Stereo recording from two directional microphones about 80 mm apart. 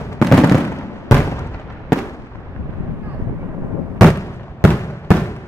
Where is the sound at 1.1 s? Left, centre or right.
Left.